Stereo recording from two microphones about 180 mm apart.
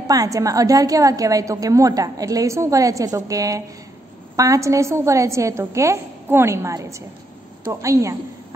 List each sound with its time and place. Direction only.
0.1 s a woman's voice: 20° right (ahead or behind)